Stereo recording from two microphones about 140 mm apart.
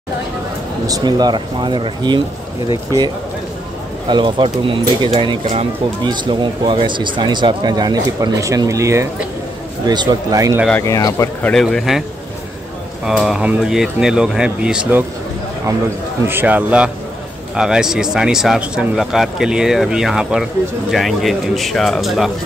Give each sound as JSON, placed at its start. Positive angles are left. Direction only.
{"t": 0.8, "sound": "speech", "side_deg": -30}
{"t": 4.1, "sound": "speech", "side_deg": -35}
{"t": 10.8, "sound": "speech", "side_deg": 25}
{"t": 11.4, "sound": "speech", "side_deg": 5}
{"t": 13.0, "sound": "speech", "side_deg": 0}
{"t": 16.3, "sound": "speech", "side_deg": -15}